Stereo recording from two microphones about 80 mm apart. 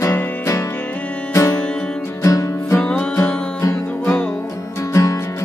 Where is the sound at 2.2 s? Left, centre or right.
Left.